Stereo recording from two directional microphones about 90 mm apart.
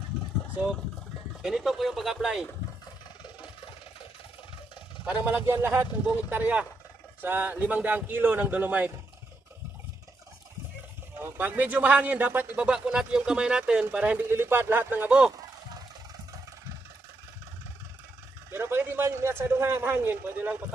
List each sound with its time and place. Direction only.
1.4 s speech: 5° right (ahead or behind)
5.0 s speech: 15° right (ahead or behind)
11.1 s speech: 25° right (ahead or behind)
18.5 s a sound: 25° right (ahead or behind)